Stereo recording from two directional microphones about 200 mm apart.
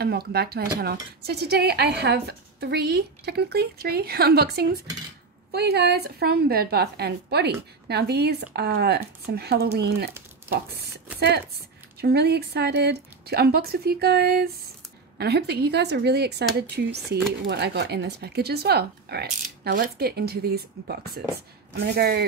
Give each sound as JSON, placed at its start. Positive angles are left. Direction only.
{"t": 0.0, "sound": "speech", "side_deg": -50}
{"t": 11.1, "sound": "speech", "side_deg": -55}